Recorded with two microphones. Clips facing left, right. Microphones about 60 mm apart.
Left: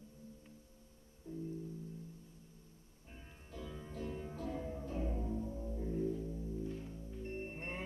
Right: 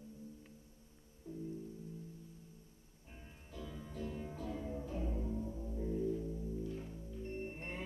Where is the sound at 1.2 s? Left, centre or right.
Left.